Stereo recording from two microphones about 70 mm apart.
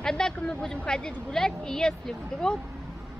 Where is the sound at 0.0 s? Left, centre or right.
Centre.